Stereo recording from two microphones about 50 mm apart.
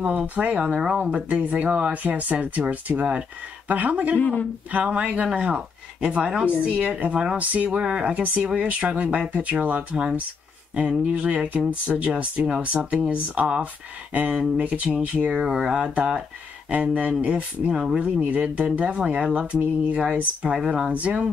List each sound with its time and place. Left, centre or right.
0.4 s speech: right
4.2 s speech: left
4.7 s speech: right
20.8 s speech: right